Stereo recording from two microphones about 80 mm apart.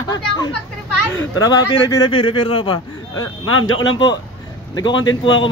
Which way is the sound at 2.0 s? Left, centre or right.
Left.